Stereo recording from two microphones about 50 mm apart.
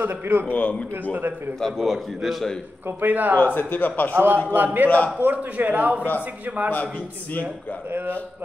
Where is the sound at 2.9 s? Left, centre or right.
Right.